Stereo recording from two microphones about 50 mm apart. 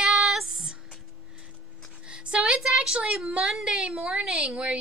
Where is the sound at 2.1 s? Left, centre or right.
Centre.